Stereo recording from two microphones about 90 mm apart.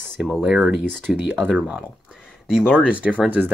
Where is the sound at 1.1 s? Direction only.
Centre (ahead or behind).